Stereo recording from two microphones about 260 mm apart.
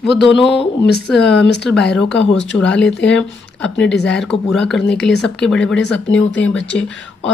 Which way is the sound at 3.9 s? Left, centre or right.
Left.